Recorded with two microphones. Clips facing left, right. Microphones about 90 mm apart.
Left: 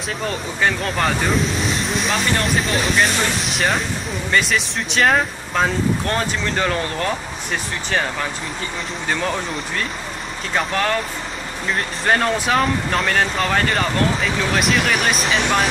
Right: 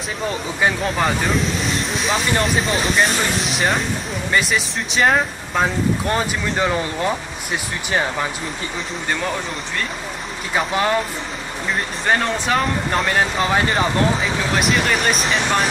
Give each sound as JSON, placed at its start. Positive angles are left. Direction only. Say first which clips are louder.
{"t": 0.6, "sound": "speech", "louder": "right 1 dB", "side_deg": -5}
{"t": 10.5, "sound": "speech", "louder": "right 1 dB", "side_deg": -10}
{"t": 12.1, "sound": "speech", "louder": "left 1 dB", "side_deg": 0}